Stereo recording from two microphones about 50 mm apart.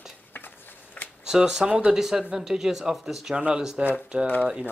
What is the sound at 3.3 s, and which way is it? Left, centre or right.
Speech, centre.